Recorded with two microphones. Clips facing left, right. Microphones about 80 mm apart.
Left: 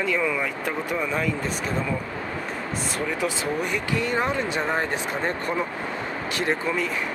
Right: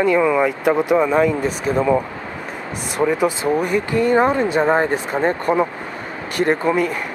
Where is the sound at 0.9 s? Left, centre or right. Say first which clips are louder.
Right 10 dB; right.